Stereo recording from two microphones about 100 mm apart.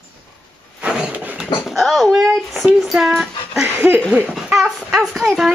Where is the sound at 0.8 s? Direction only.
10° right (ahead or behind).